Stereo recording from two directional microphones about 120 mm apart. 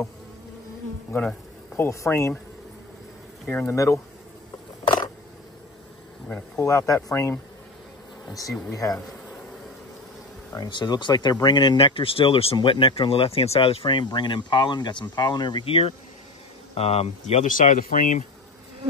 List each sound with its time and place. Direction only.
1.8 s speech: 25° left (ahead or behind)
3.4 s speech: 20° left (ahead or behind)
6.2 s speech: 10° left (ahead or behind)
6.6 s speech: 25° left (ahead or behind)
10.5 s speech: 35° left (ahead or behind); by 18.2 s 90° left